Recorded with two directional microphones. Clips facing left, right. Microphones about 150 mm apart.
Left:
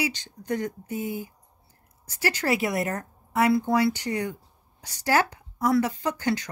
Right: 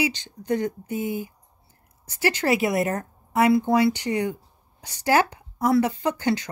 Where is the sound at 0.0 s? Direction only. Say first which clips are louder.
Right 4 dB; 25° right (ahead or behind).